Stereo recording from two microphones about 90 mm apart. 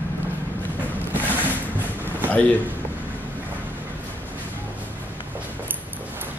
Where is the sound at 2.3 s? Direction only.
20° left (ahead or behind).